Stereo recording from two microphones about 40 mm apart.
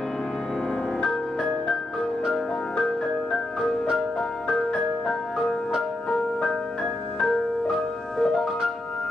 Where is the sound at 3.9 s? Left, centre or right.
Centre.